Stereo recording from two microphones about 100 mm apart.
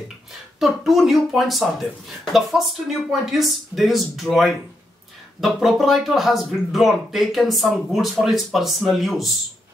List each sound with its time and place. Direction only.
0.6 s speech: centre (ahead or behind)